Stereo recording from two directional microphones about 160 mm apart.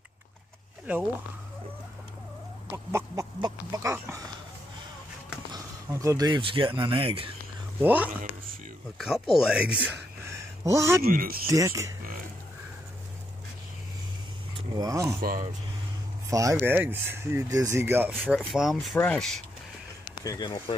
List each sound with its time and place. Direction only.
2.7 s speech: 20° right (ahead or behind)
5.5 s a sound: 20° right (ahead or behind)
6.4 s speech: 35° right (ahead or behind)
7.8 s speech: 10° right (ahead or behind)
10.6 s speech: 20° right (ahead or behind)
11.1 s speech: 65° right (ahead or behind)
11.4 s speech: 20° right (ahead or behind)
14.8 s speech: 20° right (ahead or behind)
15.1 s speech: 65° right (ahead or behind)
16.3 s speech: 20° right (ahead or behind)
18.3 s speech: centre (ahead or behind)
20.2 s speech: 30° left (ahead or behind)